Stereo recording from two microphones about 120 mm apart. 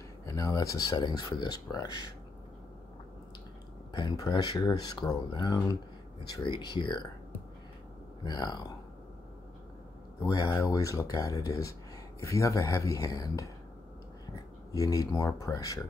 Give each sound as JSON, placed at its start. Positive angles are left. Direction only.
{"t": 0.2, "sound": "speech", "side_deg": 30}
{"t": 3.9, "sound": "speech", "side_deg": 40}
{"t": 8.2, "sound": "speech", "side_deg": 35}
{"t": 10.2, "sound": "speech", "side_deg": 30}